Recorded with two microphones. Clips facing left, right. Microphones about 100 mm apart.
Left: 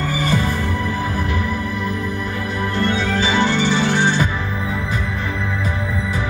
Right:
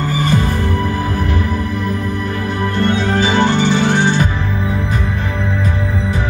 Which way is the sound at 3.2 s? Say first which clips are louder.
Right 4 dB; 60° right (ahead or behind).